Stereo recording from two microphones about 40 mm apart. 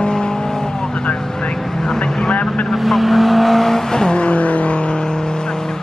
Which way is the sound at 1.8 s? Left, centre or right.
Left.